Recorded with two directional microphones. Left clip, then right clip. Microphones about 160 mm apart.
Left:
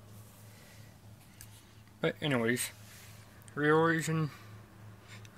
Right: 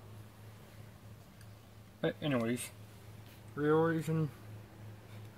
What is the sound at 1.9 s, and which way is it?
Speech, 10° left (ahead or behind).